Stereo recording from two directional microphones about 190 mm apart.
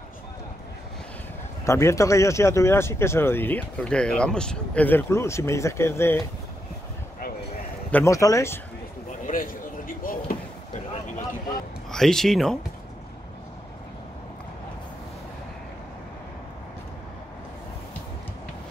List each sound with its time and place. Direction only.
1.7 s speech: 15° left (ahead or behind)
7.9 s speech: 15° left (ahead or behind)
9.2 s basketball bounce: 45° left (ahead or behind)
11.9 s speech: centre (ahead or behind)